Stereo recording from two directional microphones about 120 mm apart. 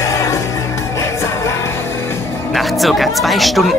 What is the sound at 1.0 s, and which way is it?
Music, 20° left (ahead or behind).